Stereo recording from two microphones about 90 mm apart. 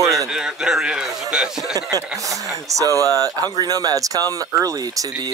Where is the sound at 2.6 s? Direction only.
40° right (ahead or behind).